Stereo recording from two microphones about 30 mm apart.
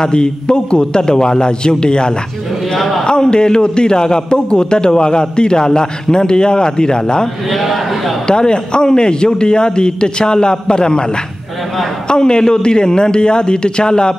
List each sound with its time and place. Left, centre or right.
0.0 s a man's voice: left
7.6 s a sound: centre
8.3 s a man's voice: left
12.1 s a man's voice: left